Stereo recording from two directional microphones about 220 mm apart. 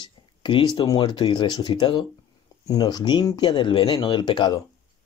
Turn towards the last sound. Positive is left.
turn(degrees=20)  # may be behind; listen again after turning